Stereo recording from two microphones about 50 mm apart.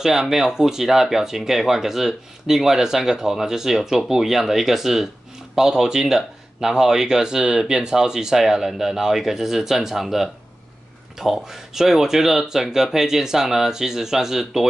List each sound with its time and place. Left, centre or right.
0.0 s speech: centre